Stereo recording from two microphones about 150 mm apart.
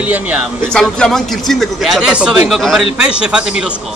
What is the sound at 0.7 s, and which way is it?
A man's voice, 5° left (ahead or behind).